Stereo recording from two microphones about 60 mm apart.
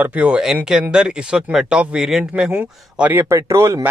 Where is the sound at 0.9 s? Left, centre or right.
Centre.